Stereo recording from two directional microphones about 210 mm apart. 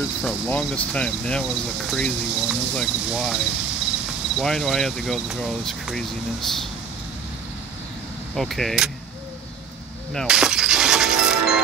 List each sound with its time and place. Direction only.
0.5 s cricket: 5° left (ahead or behind)
8.4 s cricket: centre (ahead or behind)
10.1 s music: 5° right (ahead or behind)